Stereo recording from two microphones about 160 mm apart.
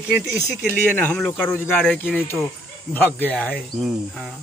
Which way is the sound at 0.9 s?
10° left (ahead or behind).